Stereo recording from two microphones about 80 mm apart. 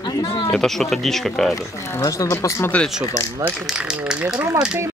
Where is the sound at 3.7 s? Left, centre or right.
Centre.